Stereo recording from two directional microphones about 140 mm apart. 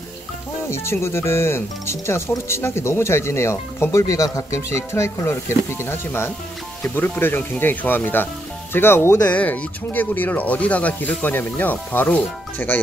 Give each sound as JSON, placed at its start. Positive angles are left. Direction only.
{"t": 0.7, "sound": "speech", "side_deg": 20}